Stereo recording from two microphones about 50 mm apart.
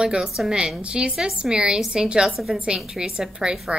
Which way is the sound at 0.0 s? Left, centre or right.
Centre.